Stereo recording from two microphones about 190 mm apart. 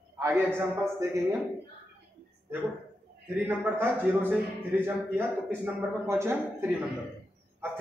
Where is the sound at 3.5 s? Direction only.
10° right (ahead or behind).